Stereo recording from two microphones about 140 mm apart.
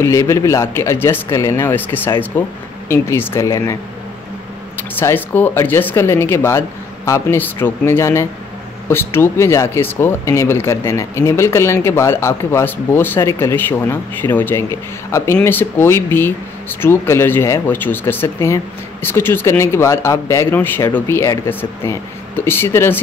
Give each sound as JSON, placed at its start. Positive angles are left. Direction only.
{"t": 0.0, "sound": "speech", "side_deg": 20}
{"t": 4.9, "sound": "speech", "side_deg": 15}